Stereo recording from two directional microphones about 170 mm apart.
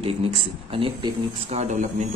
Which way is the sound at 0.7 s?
30° right (ahead or behind).